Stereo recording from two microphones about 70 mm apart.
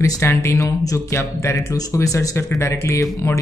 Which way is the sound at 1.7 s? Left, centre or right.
Left.